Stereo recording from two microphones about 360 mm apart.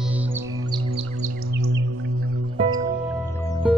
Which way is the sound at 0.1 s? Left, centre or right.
Centre.